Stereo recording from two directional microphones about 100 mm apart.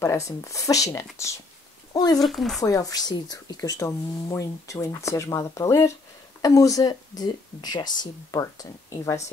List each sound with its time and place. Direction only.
0.0 s speech: 30° left (ahead or behind)
2.0 s speech: 40° left (ahead or behind)
2.2 s speech: centre (ahead or behind)
2.6 s speech: 35° left (ahead or behind)